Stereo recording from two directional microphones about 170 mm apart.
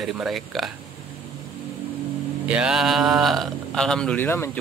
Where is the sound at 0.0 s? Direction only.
Centre (ahead or behind).